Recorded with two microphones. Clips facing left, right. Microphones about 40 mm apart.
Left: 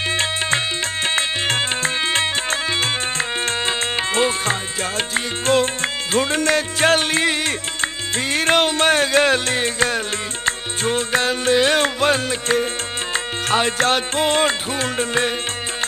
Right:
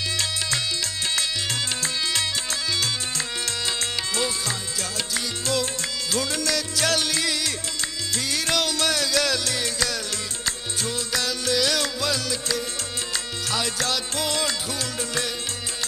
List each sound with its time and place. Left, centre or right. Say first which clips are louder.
0.1 s music: left 8 dB; left